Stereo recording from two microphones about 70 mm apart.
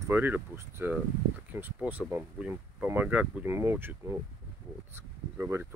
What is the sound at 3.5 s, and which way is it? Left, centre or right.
Speech, right.